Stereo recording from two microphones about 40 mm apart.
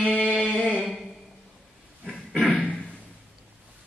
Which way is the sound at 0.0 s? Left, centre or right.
Left.